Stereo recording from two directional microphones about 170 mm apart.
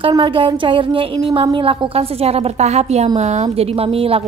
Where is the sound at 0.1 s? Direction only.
30° right (ahead or behind).